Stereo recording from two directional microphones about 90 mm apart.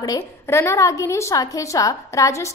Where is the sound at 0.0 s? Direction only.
35° left (ahead or behind).